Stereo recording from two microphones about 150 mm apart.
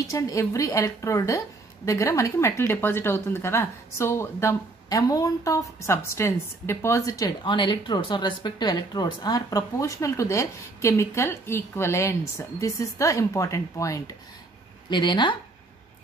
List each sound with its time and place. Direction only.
0.1 s a woman's voice: 20° left (ahead or behind)